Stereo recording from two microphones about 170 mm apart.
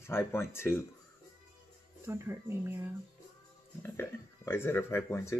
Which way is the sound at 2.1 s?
15° right (ahead or behind).